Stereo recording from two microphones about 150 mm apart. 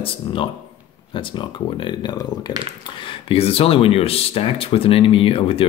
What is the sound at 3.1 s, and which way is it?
Speech, 40° left (ahead or behind).